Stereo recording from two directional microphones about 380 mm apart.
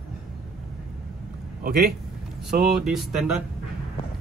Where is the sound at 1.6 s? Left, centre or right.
Right.